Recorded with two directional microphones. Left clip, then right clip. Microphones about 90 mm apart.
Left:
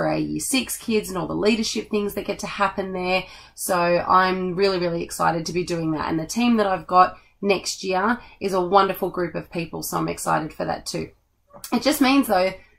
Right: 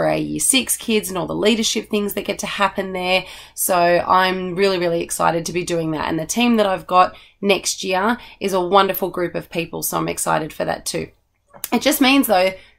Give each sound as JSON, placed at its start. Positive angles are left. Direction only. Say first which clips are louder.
{"t": 0.0, "sound": "speech", "louder": "right 4 dB", "side_deg": -15}
{"t": 11.7, "sound": "speech", "louder": "right 4 dB", "side_deg": -15}